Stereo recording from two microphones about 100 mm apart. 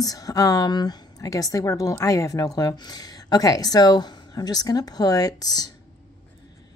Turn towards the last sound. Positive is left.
turn(degrees=40)  # may be behind; listen again after turning